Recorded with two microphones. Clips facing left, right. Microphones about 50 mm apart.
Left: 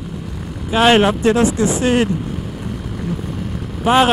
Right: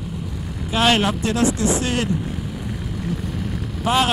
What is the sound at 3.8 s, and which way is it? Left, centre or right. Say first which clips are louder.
Speech: left 6 dB; left.